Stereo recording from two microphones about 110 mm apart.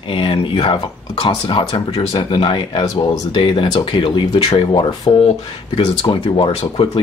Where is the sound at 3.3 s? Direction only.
50° left (ahead or behind).